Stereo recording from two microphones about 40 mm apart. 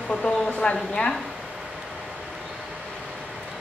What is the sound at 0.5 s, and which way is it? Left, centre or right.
Speech, left.